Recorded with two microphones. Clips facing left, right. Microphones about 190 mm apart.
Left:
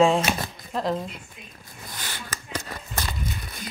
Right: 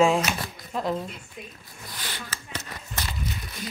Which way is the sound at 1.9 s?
45° left (ahead or behind).